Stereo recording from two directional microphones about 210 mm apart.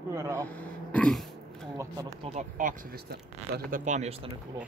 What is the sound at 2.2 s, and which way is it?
Speech, 35° right (ahead or behind).